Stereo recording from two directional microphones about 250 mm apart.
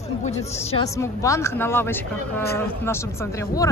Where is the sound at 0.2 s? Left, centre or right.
Left.